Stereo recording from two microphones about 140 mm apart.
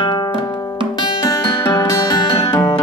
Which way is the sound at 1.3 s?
25° left (ahead or behind).